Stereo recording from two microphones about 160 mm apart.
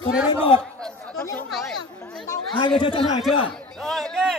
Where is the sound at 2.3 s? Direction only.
30° left (ahead or behind).